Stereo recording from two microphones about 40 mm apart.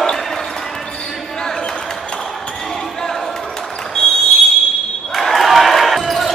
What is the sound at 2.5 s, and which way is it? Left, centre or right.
Basketball bounce, centre.